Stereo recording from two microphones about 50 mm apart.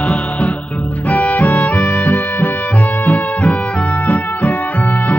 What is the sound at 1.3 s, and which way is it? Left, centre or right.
Music, left.